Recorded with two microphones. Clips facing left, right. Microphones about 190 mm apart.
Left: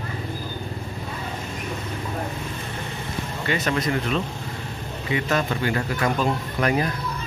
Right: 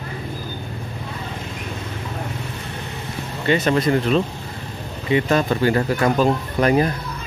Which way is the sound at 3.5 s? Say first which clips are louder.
Right 7 dB; 30° right (ahead or behind).